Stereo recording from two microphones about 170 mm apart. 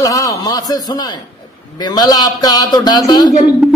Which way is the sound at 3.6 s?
5° right (ahead or behind).